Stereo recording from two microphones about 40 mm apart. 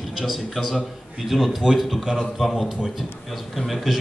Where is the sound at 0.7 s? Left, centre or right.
Centre.